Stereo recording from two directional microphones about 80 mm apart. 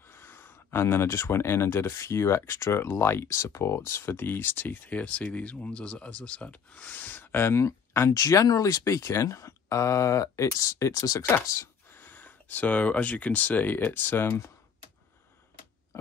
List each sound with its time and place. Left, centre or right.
0.1 s speech: left
11.2 s speech: left
11.9 s speech: left